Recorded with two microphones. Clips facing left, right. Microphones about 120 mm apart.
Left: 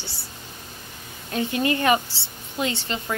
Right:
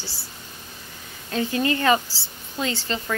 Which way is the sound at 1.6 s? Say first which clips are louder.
Even; 25° left (ahead or behind).